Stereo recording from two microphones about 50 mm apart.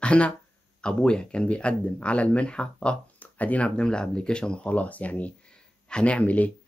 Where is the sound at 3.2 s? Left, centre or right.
Left.